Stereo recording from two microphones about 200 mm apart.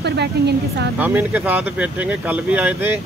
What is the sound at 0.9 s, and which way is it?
Speech, 10° right (ahead or behind).